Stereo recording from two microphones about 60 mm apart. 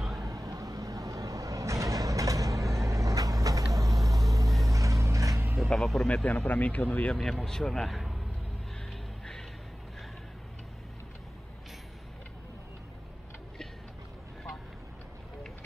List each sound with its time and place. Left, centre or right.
0.2 s vehicle: right
4.6 s a sound: right
5.7 s speech: centre
6.0 s speech: left
7.2 s speech: centre